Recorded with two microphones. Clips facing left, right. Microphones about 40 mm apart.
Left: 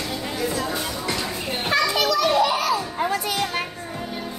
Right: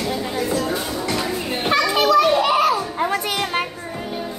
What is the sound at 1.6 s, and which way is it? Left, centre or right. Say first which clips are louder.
Children playing: right 2 dB; centre.